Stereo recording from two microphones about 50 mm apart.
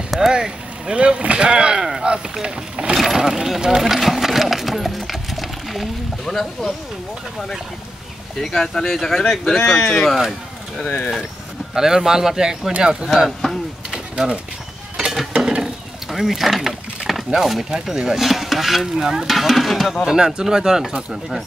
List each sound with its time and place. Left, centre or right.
0.3 s speech: centre
8.4 s speech: centre
11.7 s speech: centre
13.9 s a sound: centre
16.1 s speech: centre
20.1 s speech: centre